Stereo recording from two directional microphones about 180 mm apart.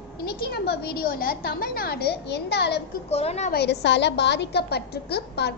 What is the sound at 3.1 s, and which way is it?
Speech, 35° left (ahead or behind).